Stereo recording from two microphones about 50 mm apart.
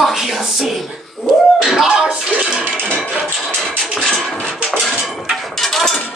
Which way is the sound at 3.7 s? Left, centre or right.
Left.